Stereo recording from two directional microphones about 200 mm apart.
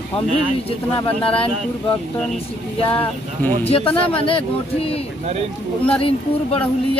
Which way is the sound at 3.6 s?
30° left (ahead or behind).